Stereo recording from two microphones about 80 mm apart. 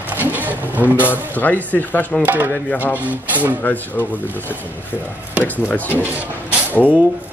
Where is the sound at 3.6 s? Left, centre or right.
Left.